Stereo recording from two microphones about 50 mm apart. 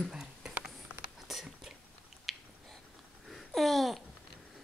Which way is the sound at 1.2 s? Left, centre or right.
Centre.